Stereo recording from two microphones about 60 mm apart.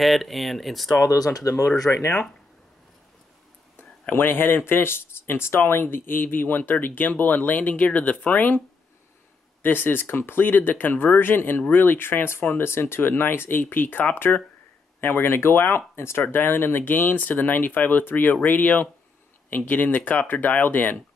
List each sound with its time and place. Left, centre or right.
0.0 s speech: centre
0.9 s speech: left
1.9 s speech: left
4.1 s speech: left